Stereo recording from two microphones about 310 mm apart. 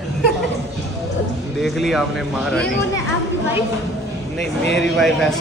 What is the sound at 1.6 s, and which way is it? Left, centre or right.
Speech, centre.